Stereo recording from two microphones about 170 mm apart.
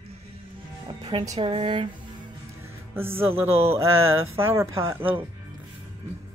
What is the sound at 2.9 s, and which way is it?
Speech, 15° right (ahead or behind).